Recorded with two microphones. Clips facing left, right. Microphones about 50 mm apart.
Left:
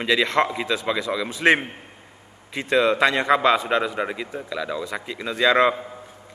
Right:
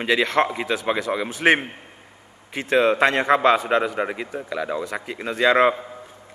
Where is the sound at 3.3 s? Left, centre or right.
Right.